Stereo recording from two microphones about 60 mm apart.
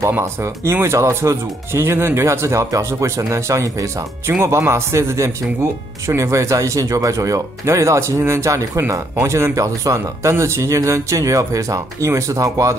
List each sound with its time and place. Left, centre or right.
0.2 s speech: right
4.5 s speech: right
10.3 s speech: right